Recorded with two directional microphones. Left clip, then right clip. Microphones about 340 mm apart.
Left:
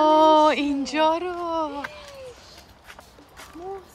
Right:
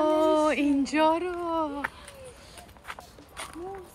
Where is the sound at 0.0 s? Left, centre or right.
Centre.